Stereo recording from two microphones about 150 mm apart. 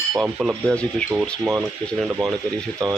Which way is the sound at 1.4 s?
15° right (ahead or behind).